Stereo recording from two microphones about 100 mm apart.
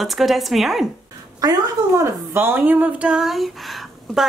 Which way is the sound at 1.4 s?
40° right (ahead or behind).